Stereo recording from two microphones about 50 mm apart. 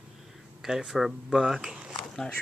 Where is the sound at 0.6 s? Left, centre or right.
Centre.